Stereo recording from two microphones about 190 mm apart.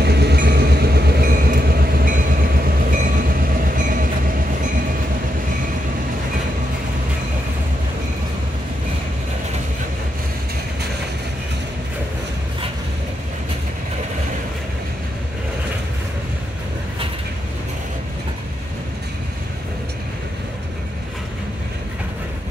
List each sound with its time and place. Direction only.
0.0 s train: 60° right (ahead or behind)
3.6 s train: 45° right (ahead or behind)